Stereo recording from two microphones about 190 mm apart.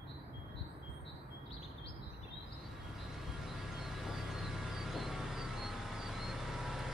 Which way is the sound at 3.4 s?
Centre (ahead or behind).